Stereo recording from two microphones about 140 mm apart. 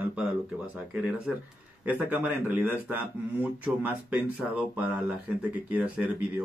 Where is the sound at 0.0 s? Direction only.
10° right (ahead or behind).